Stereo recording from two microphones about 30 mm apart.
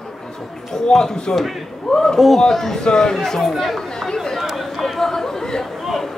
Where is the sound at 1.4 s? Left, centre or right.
Centre.